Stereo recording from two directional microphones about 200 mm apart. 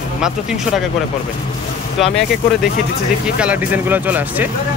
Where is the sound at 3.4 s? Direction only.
10° right (ahead or behind).